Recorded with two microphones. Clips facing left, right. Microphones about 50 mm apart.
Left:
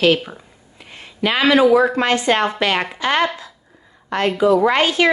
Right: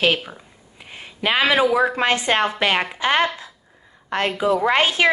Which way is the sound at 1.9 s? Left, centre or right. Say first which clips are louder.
Left 2 dB; centre.